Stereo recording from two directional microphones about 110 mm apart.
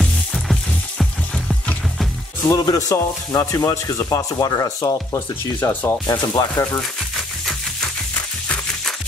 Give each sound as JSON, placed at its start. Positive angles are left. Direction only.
{"t": 0.0, "sound": "music", "side_deg": 0}
{"t": 2.5, "sound": "speech", "side_deg": 30}
{"t": 5.6, "sound": "speech", "side_deg": 15}
{"t": 6.0, "sound": "speech", "side_deg": 30}